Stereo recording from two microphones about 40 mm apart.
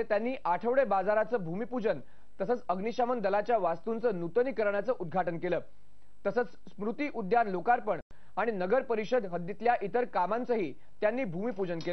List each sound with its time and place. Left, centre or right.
0.0 s speech: centre